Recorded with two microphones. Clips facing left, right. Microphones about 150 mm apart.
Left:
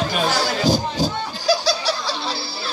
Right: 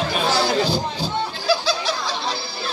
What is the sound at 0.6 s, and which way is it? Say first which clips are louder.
Music: left 3 dB; 40° left (ahead or behind).